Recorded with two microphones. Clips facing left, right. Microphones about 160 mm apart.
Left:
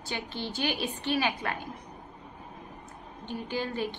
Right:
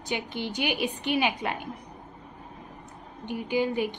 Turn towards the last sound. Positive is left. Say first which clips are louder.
# right 6 dB
turn(degrees=-15)  # may be behind; listen again after turning